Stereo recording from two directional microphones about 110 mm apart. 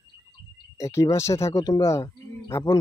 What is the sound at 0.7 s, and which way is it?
Speech, 30° left (ahead or behind).